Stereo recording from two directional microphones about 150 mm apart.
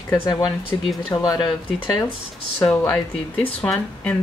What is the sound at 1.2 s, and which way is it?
Speech, 25° left (ahead or behind).